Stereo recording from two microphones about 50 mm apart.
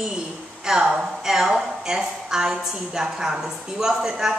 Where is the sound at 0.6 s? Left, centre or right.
Centre.